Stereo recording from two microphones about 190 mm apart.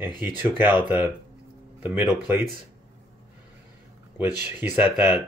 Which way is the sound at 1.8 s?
10° right (ahead or behind).